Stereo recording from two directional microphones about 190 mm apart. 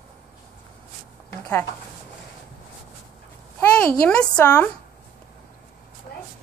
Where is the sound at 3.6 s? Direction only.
5° left (ahead or behind).